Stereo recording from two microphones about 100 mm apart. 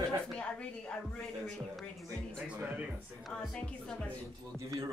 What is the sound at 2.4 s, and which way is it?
Speech, 10° right (ahead or behind).